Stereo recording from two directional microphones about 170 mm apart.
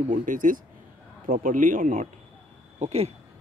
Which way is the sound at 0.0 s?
50° right (ahead or behind).